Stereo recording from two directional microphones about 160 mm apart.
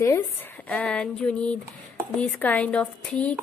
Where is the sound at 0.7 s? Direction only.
10° left (ahead or behind).